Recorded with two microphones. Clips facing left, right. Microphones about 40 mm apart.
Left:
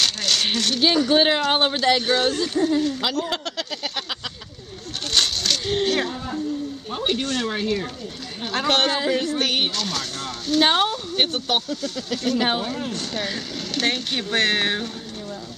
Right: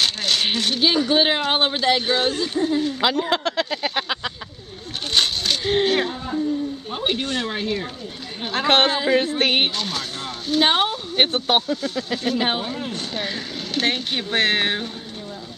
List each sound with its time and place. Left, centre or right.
0.0 s speech: centre
3.0 s speech: right
5.1 s a sound: centre
6.9 s speech: centre
8.6 s speech: right
9.8 s speech: centre
11.3 s speech: right
11.6 s speech: centre